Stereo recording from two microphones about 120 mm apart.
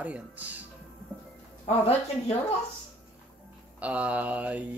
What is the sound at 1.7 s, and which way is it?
Speech, 60° left (ahead or behind).